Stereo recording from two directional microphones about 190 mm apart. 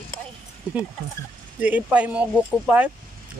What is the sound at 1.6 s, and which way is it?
Speech, 5° right (ahead or behind).